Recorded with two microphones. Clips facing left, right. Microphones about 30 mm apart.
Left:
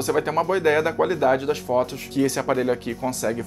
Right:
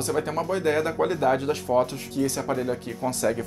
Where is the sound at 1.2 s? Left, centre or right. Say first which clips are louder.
Left 3 dB; centre.